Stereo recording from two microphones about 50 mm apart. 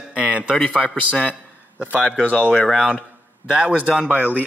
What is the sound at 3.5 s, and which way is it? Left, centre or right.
Speech, right.